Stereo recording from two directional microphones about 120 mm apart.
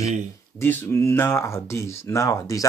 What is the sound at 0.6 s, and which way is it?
Speech, 20° left (ahead or behind).